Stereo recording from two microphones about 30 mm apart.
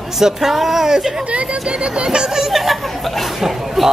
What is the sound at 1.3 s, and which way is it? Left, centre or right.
Speech, right.